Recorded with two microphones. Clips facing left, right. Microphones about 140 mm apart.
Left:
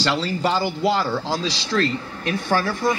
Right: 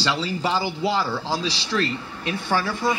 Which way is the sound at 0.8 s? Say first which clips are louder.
Left 3 dB; 15° left (ahead or behind).